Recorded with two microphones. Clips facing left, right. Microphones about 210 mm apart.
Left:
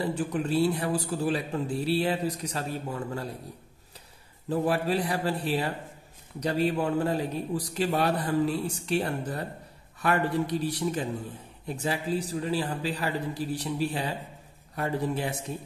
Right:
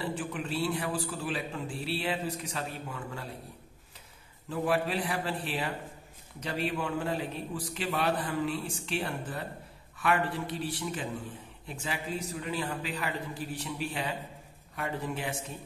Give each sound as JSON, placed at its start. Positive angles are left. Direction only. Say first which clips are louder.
{"t": 0.0, "sound": "a man's voice", "louder": "left 6 dB", "side_deg": 40}
{"t": 4.5, "sound": "a man's voice", "louder": "left 4 dB", "side_deg": 40}